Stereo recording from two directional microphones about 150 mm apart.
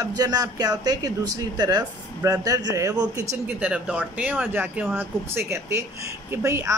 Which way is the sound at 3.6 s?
5° right (ahead or behind).